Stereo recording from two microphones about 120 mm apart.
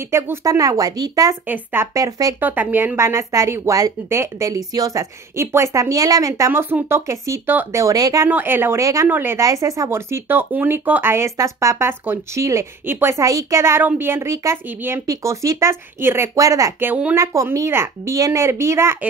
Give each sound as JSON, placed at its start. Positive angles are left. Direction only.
{"t": 0.1, "sound": "a woman's voice", "side_deg": -20}
{"t": 1.5, "sound": "a woman's voice", "side_deg": -20}
{"t": 2.4, "sound": "a woman's voice", "side_deg": -15}
{"t": 8.3, "sound": "a woman's voice", "side_deg": -15}
{"t": 16.9, "sound": "speech", "side_deg": -15}
{"t": 17.2, "sound": "a woman's voice", "side_deg": -25}